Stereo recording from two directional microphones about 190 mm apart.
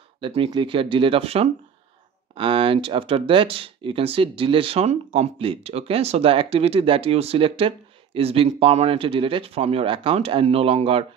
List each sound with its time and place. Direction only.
0.2 s speech: 25° right (ahead or behind)